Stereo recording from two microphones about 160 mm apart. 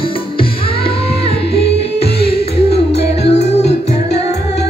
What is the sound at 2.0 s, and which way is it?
Music, 35° left (ahead or behind).